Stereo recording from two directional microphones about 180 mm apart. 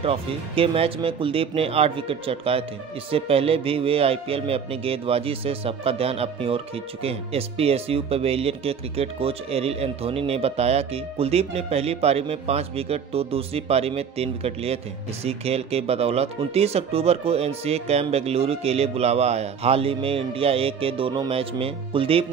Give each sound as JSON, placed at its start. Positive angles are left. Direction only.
{"t": 0.0, "sound": "music", "side_deg": -30}